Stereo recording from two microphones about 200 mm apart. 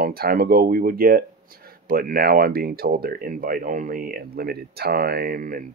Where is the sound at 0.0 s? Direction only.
45° right (ahead or behind).